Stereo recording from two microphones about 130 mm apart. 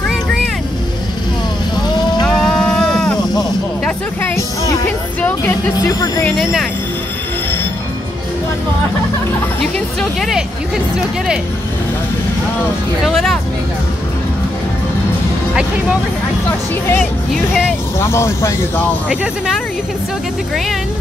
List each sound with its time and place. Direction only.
2.2 s sheep: 5° left (ahead or behind)
4.8 s music: 15° left (ahead or behind)
5.8 s speech: 30° left (ahead or behind)
6.3 s speech: centre (ahead or behind)
9.9 s speech: centre (ahead or behind)
13.0 s speech: centre (ahead or behind)
17.0 s speech: centre (ahead or behind)
17.9 s speech: 20° left (ahead or behind)
19.0 s speech: 5° right (ahead or behind)